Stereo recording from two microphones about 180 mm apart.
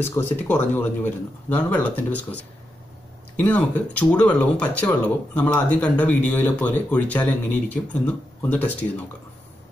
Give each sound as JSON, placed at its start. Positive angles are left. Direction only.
{"t": 0.0, "sound": "speech", "side_deg": 10}